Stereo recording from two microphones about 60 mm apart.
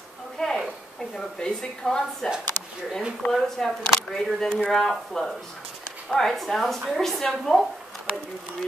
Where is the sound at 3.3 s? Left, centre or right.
Centre.